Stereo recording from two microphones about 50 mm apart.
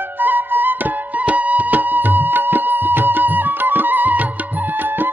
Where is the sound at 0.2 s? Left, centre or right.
Right.